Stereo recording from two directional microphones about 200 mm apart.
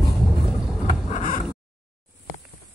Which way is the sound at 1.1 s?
40° left (ahead or behind).